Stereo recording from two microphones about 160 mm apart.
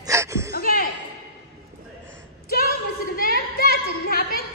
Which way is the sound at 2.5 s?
65° left (ahead or behind).